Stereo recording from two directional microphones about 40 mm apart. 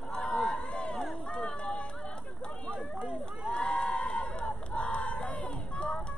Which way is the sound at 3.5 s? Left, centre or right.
Left.